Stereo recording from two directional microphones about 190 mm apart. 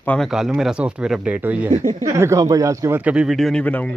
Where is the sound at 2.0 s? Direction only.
15° right (ahead or behind); by 3.9 s 5° left (ahead or behind).